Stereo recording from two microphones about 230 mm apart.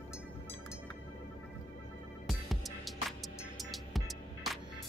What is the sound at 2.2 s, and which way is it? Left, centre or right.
Music, centre.